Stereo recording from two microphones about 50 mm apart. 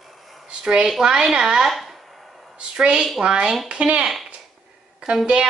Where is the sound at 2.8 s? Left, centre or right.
Centre.